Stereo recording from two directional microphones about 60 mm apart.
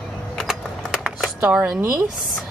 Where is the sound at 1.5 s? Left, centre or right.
Centre.